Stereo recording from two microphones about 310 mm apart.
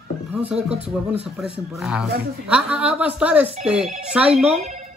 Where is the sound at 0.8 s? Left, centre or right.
Centre.